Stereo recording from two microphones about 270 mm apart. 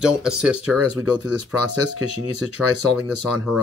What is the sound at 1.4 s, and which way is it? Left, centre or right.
Speech, right.